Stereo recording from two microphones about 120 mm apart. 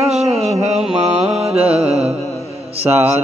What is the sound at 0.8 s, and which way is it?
Mantra, 5° right (ahead or behind).